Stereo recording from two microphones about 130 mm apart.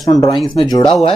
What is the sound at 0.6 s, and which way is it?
Speech, 30° left (ahead or behind).